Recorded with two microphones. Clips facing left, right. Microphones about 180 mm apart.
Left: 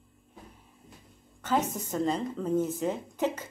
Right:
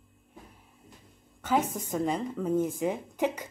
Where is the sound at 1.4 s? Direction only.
10° right (ahead or behind).